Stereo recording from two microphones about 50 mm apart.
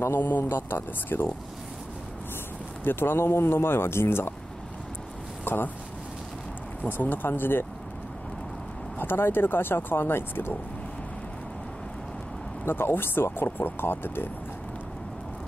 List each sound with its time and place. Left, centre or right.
0.0 s speech: left
2.8 s speech: left
5.4 s a sound: left
6.9 s speech: left
8.9 s speech: left
12.6 s speech: left